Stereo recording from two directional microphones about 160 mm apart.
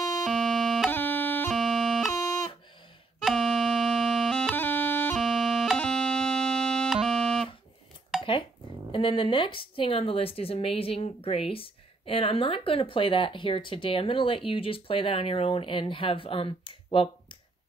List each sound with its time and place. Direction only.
0.2 s music: centre (ahead or behind)
0.8 s music: 10° left (ahead or behind)
1.5 s music: centre (ahead or behind)
3.2 s music: centre (ahead or behind)
4.6 s music: 10° left (ahead or behind)
5.1 s music: centre (ahead or behind)
8.2 s dishes: 35° left (ahead or behind)
8.9 s a woman's voice: 30° left (ahead or behind)